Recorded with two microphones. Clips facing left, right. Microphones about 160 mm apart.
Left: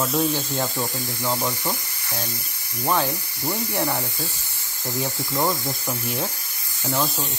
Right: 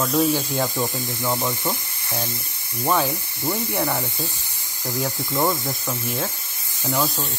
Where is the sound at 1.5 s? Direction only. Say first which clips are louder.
Right 2 dB; 25° right (ahead or behind).